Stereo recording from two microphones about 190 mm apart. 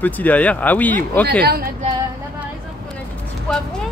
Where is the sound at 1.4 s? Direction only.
50° right (ahead or behind).